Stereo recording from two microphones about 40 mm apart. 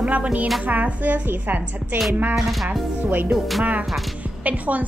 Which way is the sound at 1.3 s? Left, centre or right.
Right.